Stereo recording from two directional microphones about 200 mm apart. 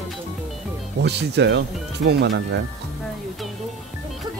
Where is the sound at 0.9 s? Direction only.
55° right (ahead or behind).